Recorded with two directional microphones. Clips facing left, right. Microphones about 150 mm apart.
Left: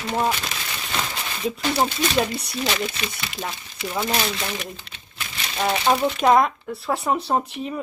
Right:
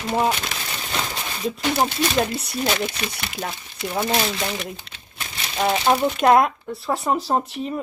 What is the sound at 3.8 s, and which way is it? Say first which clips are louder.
Speech: right 2 dB; 15° right (ahead or behind).